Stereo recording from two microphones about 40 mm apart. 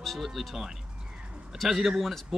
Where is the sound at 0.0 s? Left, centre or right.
Centre.